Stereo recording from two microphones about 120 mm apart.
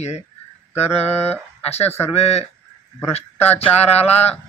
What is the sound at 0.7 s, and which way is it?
A man's voice, 60° left (ahead or behind).